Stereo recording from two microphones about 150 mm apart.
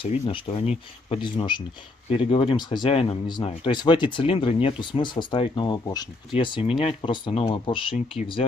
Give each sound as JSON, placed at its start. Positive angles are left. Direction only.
{"t": 0.0, "sound": "speech", "side_deg": 35}